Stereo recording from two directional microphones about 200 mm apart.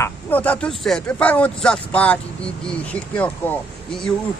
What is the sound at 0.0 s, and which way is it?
Speech, 10° left (ahead or behind).